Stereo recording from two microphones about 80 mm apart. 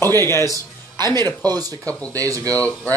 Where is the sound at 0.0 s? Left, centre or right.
Left.